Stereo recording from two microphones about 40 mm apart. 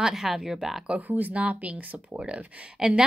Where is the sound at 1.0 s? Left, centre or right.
Right.